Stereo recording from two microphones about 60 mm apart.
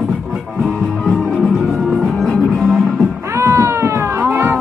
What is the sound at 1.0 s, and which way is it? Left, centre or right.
Music, centre.